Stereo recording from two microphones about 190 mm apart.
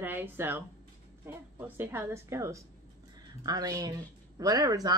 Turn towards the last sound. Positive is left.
turn(degrees=-20)  # may be behind; listen again after turning